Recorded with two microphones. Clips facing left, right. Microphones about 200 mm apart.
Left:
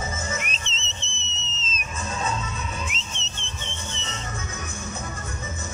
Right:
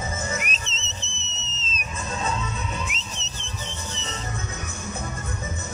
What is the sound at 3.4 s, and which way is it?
Rub, 35° right (ahead or behind).